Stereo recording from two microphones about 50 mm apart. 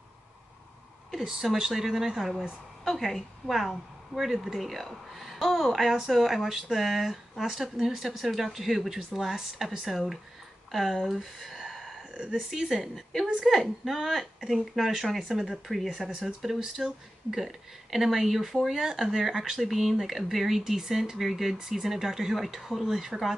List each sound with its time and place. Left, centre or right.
1.1 s a woman's voice: centre
11.3 s gasp: centre
12.3 s a woman's voice: centre
15.4 s a woman's voice: centre